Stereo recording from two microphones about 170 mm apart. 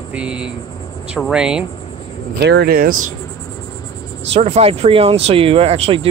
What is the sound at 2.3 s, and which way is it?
Speech, 75° right (ahead or behind).